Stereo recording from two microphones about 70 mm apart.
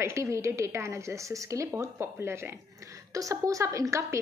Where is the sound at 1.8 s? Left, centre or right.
Right.